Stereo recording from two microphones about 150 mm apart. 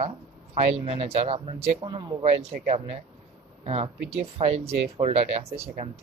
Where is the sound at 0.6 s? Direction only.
45° right (ahead or behind).